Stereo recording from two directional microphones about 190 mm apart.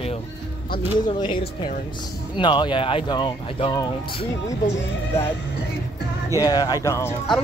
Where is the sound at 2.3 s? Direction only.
25° left (ahead or behind).